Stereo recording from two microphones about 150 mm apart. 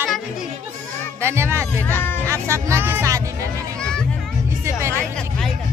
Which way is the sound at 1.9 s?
15° left (ahead or behind).